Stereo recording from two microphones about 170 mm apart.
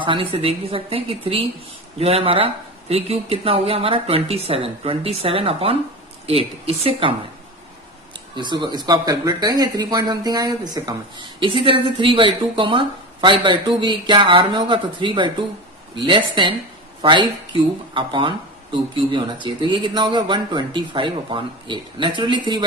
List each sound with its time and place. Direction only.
0.0 s speech: 30° right (ahead or behind)
8.4 s speech: 25° right (ahead or behind)